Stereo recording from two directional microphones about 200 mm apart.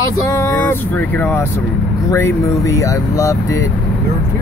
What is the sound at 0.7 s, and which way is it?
Speech, 10° left (ahead or behind).